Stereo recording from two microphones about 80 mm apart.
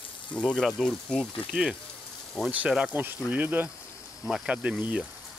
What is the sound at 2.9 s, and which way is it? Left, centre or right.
Speech, right.